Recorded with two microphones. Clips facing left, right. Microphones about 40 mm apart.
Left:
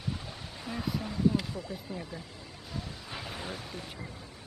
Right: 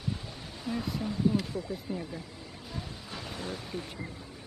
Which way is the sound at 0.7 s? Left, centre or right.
Centre.